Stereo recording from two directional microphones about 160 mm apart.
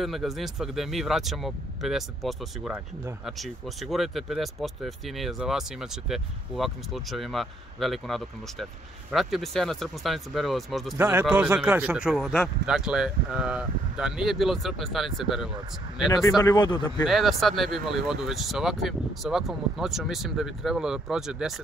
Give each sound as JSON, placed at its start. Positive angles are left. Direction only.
{"t": 0.0, "sound": "speech", "side_deg": 0}
{"t": 11.0, "sound": "a man's voice", "side_deg": -15}
{"t": 16.3, "sound": "speech", "side_deg": 25}
{"t": 17.0, "sound": "speech", "side_deg": 0}